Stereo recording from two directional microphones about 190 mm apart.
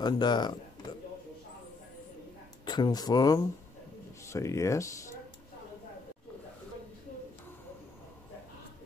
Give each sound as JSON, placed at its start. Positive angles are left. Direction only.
{"t": 0.0, "sound": "speech", "side_deg": 20}
{"t": 2.6, "sound": "speech", "side_deg": 20}